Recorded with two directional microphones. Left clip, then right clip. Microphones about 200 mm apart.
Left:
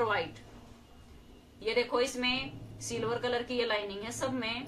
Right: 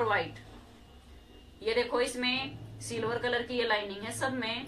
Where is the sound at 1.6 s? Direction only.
5° right (ahead or behind).